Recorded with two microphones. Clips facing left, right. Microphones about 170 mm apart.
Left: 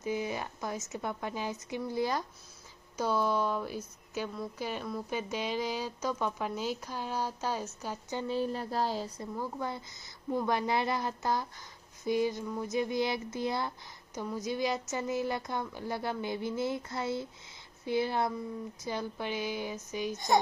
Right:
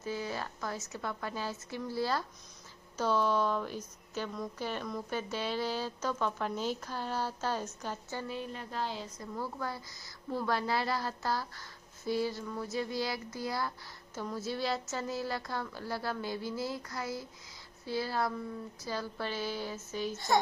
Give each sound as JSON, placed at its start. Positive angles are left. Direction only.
{"t": 0.0, "sound": "a woman's voice", "side_deg": 15}
{"t": 8.3, "sound": "speech", "side_deg": 35}
{"t": 9.3, "sound": "a woman's voice", "side_deg": 20}